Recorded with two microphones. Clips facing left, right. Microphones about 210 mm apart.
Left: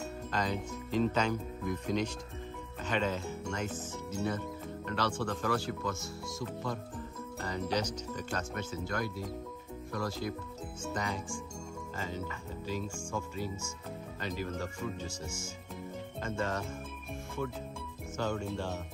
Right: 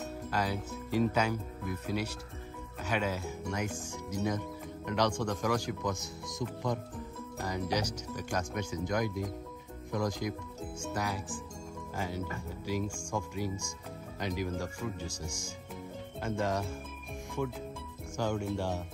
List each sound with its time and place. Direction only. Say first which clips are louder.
0.3 s speech: even; 10° right (ahead or behind)
7.3 s speech: right 1 dB; 10° right (ahead or behind)
18.1 s speech: right 2 dB; 10° right (ahead or behind)